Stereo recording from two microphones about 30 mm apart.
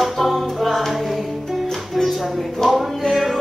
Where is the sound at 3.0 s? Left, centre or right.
Centre.